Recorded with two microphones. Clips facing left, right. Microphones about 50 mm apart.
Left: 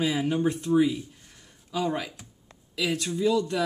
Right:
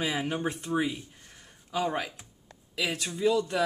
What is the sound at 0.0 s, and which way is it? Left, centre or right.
Speech, centre.